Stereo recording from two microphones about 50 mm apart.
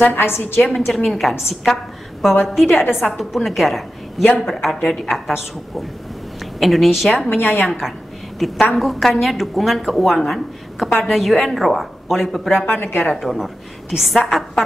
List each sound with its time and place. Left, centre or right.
0.0 s a woman's voice: left
0.7 s a woman's voice: centre
6.6 s speech: centre
7.2 s a woman's voice: left
7.6 s speech: centre
12.6 s a woman's voice: left
13.1 s speech: centre